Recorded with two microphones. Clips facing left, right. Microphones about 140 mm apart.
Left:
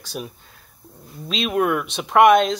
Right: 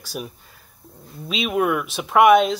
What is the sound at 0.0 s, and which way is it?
Speech, 10° right (ahead or behind).